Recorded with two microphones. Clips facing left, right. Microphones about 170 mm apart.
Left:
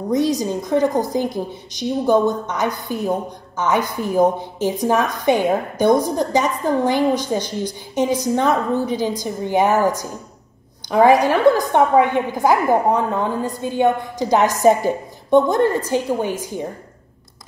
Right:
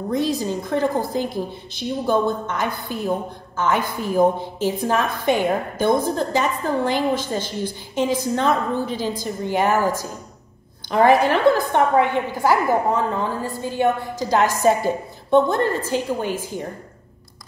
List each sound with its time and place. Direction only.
0.1 s a woman's voice: 15° left (ahead or behind)
10.9 s a woman's voice: 15° left (ahead or behind)